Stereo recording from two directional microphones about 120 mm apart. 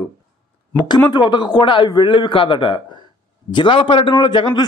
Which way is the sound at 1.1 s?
35° left (ahead or behind).